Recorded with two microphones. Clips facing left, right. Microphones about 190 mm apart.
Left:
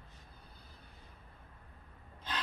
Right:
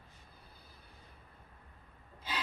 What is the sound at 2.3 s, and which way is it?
Filing, 10° right (ahead or behind).